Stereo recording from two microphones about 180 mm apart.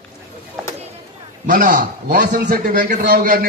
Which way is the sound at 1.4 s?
45° right (ahead or behind).